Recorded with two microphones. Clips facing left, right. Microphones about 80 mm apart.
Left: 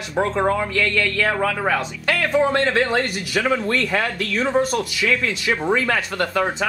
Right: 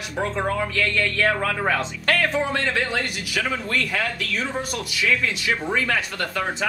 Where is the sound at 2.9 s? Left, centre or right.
Left.